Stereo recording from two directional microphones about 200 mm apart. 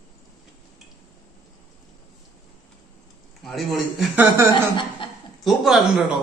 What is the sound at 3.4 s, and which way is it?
A man's voice, centre (ahead or behind).